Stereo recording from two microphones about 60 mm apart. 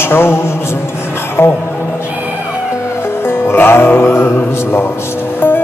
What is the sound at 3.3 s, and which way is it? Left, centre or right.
Music, left.